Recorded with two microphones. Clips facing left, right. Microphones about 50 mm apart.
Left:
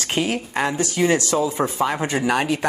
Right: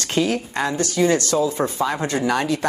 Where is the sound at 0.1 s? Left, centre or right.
Left.